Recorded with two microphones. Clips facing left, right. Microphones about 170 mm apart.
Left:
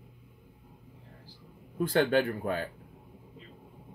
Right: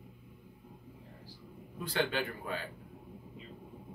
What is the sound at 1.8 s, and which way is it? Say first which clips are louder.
Speech: left 8 dB; 50° left (ahead or behind).